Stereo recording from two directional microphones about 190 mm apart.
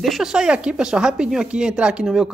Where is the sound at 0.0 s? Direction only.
Centre (ahead or behind).